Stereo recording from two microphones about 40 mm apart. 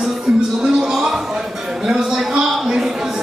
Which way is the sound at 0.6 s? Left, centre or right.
Centre.